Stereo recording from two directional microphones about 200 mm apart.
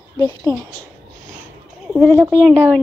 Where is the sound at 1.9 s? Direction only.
5° right (ahead or behind).